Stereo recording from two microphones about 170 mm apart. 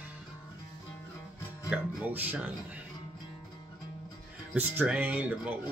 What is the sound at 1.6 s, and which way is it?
Speech, 10° right (ahead or behind).